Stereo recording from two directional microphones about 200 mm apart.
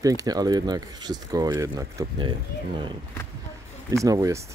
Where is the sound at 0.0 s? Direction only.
15° right (ahead or behind).